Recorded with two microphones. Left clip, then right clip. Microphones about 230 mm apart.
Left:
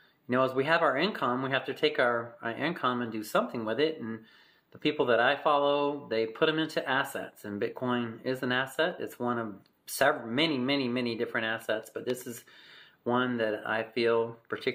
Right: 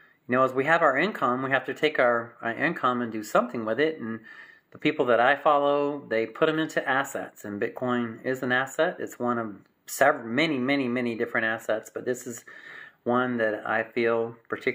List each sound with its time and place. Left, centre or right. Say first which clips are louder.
0.3 s speech: right 4 dB; centre